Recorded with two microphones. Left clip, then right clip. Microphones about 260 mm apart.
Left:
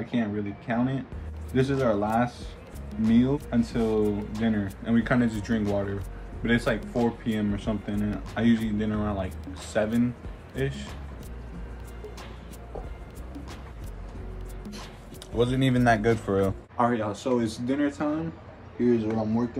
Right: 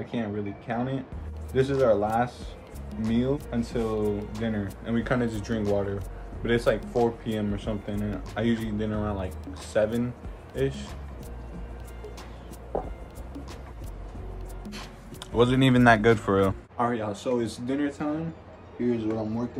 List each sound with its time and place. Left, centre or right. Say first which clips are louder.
0.0 s a man's voice: left 2 dB; centre
15.3 s a man's voice: right 3 dB; centre
18.8 s speech: left 3 dB; centre